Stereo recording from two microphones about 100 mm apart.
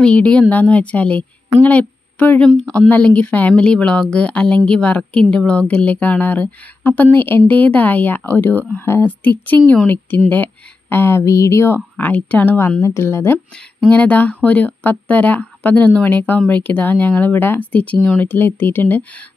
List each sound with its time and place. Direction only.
0.0 s speech: 10° left (ahead or behind); by 11.7 s 30° left (ahead or behind)
11.7 s speech: 15° left (ahead or behind)
13.8 s speech: 15° left (ahead or behind)